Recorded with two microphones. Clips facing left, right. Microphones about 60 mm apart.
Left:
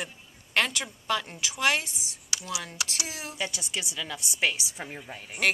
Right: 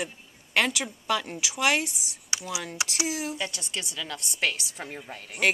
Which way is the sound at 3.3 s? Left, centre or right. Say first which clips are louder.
Even; centre.